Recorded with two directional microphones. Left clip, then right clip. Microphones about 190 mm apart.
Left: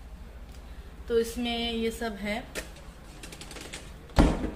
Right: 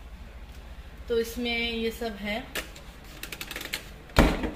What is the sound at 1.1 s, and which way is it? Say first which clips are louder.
A woman's voice: even; 20° left (ahead or behind).